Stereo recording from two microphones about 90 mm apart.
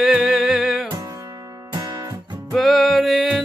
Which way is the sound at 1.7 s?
40° right (ahead or behind).